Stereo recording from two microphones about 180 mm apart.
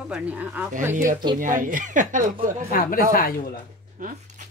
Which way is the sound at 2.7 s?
55° left (ahead or behind).